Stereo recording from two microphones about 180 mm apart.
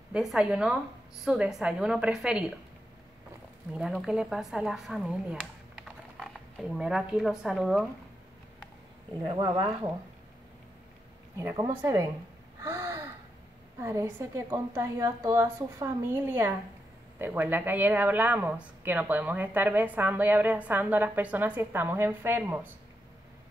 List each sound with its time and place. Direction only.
0.1 s speech: 5° right (ahead or behind)
3.7 s speech: 5° right (ahead or behind)
5.4 s a sound: centre (ahead or behind)
9.3 s speech: 30° right (ahead or behind)
11.3 s speech: 15° right (ahead or behind)
12.6 s gasp: 15° right (ahead or behind)
13.7 s speech: 15° right (ahead or behind)